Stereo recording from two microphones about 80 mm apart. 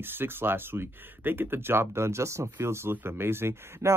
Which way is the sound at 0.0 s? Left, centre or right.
Right.